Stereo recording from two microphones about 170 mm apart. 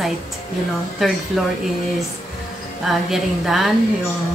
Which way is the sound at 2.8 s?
Centre (ahead or behind).